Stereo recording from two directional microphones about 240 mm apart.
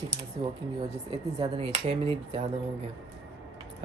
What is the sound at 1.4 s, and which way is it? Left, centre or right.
Speech, right.